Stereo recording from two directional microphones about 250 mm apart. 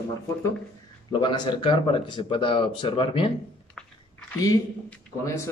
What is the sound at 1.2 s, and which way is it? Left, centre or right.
Speech, centre.